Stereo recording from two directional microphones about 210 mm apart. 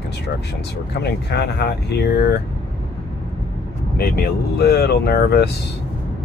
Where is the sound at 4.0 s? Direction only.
50° left (ahead or behind).